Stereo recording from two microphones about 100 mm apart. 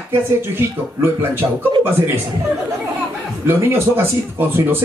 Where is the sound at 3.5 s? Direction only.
25° right (ahead or behind).